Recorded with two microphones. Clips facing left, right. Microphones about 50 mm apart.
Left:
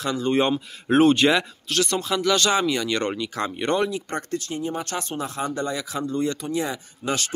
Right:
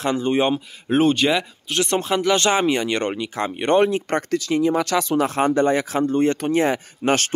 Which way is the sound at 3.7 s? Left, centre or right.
Right.